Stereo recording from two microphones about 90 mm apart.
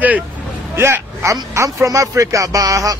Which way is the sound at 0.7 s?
25° right (ahead or behind).